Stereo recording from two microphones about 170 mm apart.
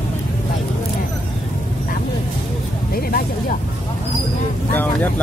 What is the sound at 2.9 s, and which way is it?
Speech, 60° left (ahead or behind).